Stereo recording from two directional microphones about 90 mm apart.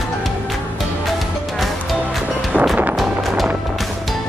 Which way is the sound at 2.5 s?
15° right (ahead or behind).